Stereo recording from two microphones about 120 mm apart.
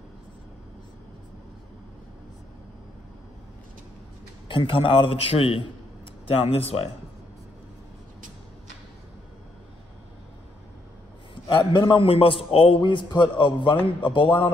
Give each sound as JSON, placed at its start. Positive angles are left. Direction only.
{"t": 4.5, "sound": "a man's voice", "side_deg": 45}
{"t": 11.4, "sound": "a man's voice", "side_deg": 40}
{"t": 12.8, "sound": "a man's voice", "side_deg": 40}